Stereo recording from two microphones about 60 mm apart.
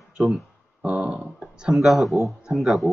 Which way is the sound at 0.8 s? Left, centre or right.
Right.